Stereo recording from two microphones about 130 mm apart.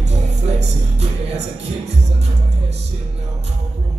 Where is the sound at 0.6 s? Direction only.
60° right (ahead or behind).